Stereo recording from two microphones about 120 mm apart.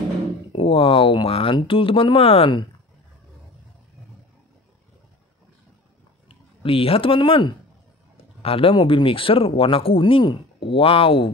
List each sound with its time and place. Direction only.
0.5 s speech: 50° left (ahead or behind)
6.2 s speech: 50° left (ahead or behind)